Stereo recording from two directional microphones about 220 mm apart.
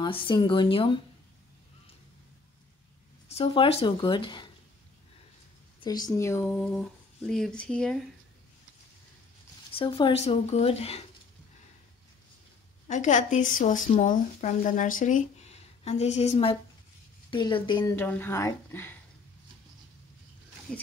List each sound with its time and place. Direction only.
0.0 s speech: 20° left (ahead or behind)
3.3 s speech: 25° left (ahead or behind)
5.8 s speech: 15° left (ahead or behind)
9.7 s speech: 25° left (ahead or behind)
12.8 s speech: 35° left (ahead or behind); by 18.9 s 10° left (ahead or behind)